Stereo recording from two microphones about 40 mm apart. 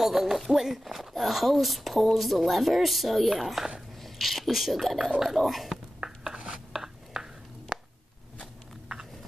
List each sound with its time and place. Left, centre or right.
0.0 s speech: centre
5.9 s rub: centre
6.7 s a sound: centre